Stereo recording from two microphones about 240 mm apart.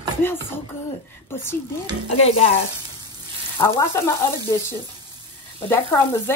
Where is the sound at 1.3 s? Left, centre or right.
Centre.